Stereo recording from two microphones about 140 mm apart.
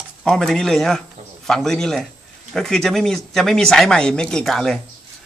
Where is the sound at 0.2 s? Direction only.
5° left (ahead or behind).